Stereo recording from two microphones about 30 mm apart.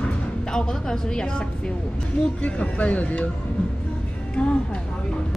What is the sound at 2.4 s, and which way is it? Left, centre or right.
Speech, left.